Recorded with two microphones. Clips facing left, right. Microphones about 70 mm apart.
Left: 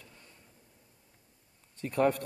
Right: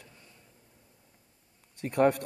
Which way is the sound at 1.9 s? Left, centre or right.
Right.